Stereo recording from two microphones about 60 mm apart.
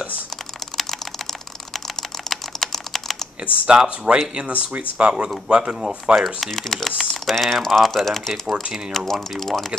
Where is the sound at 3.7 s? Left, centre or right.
Centre.